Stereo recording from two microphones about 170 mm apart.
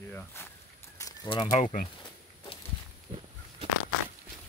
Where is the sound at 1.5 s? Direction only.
50° left (ahead or behind).